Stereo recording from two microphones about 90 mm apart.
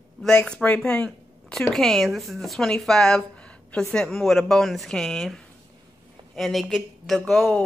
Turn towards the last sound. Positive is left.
turn(degrees=5)  # may be behind; listen again after turning